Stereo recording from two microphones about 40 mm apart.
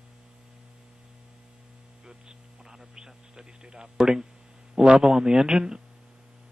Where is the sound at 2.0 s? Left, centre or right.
Centre.